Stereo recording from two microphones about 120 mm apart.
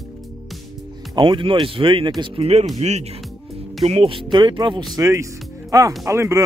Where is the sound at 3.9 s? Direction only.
50° right (ahead or behind).